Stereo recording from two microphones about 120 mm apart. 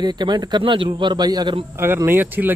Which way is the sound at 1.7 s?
20° right (ahead or behind).